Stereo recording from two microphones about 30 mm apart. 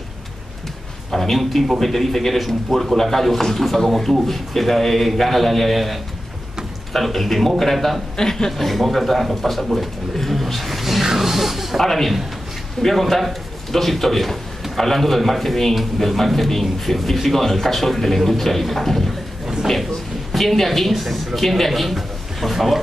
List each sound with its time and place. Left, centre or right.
1.1 s a man's voice: centre
8.2 s a man's voice: left
8.5 s a man's voice: centre
10.1 s a sound: centre
11.1 s music: centre
11.8 s a man's voice: centre
20.3 s a man's voice: centre